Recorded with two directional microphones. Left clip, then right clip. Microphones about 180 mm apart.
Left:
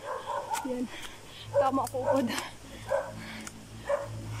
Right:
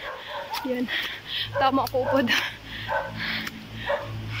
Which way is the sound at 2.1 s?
20° left (ahead or behind).